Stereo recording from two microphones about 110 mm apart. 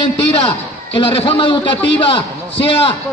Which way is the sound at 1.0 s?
55° left (ahead or behind).